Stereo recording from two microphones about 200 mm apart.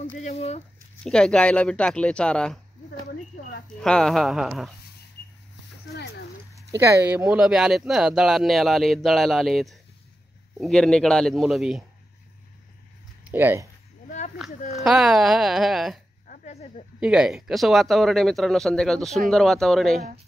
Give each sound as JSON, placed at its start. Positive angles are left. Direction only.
{"t": 0.1, "sound": "speech", "side_deg": 35}
{"t": 1.0, "sound": "speech", "side_deg": 5}
{"t": 3.6, "sound": "speech", "side_deg": 5}
{"t": 6.5, "sound": "speech", "side_deg": -15}
{"t": 13.2, "sound": "speech", "side_deg": -10}
{"t": 14.7, "sound": "speech", "side_deg": 0}
{"t": 16.3, "sound": "a sound", "side_deg": 35}
{"t": 17.0, "sound": "speech", "side_deg": -5}